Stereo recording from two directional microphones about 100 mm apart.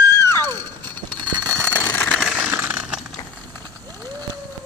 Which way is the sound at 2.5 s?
20° right (ahead or behind).